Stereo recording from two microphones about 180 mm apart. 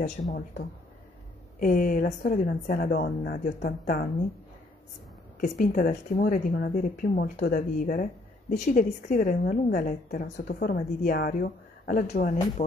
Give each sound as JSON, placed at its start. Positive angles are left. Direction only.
{"t": 1.6, "sound": "speech", "side_deg": 50}
{"t": 5.4, "sound": "speech", "side_deg": 45}
{"t": 11.4, "sound": "a sound", "side_deg": 60}
{"t": 12.1, "sound": "speech", "side_deg": 45}